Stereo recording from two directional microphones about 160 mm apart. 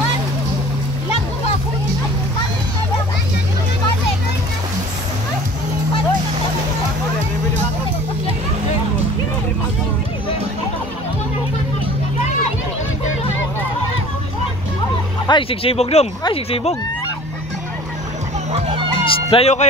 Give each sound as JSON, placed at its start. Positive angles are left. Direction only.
{"t": 15.2, "sound": "speech", "side_deg": 35}
{"t": 18.5, "sound": "music", "side_deg": -40}
{"t": 19.0, "sound": "speech", "side_deg": 40}